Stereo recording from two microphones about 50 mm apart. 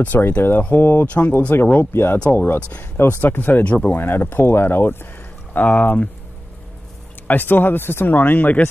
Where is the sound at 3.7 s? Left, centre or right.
Left.